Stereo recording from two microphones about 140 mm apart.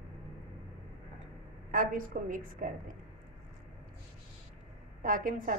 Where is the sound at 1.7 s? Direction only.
75° right (ahead or behind).